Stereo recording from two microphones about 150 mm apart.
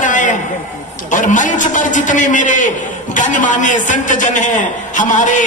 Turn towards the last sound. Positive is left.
turn(degrees=55)  # may be behind; listen again after turning